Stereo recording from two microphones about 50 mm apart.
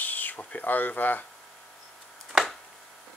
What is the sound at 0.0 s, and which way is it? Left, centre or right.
Speech, left.